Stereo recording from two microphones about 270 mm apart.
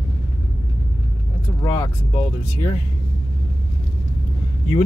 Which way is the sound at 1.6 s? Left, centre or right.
Centre.